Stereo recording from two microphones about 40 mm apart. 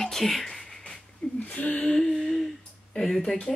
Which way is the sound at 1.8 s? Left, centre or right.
Centre.